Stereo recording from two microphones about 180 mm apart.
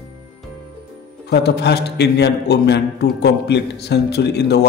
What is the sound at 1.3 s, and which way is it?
A man's voice, 70° left (ahead or behind).